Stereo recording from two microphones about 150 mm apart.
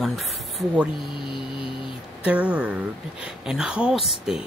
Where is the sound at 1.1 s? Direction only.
35° left (ahead or behind).